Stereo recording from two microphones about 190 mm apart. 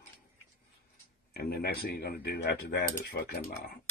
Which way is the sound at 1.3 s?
55° left (ahead or behind).